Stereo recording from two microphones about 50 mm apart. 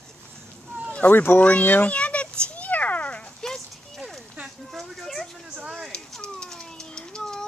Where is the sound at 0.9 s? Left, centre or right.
Left.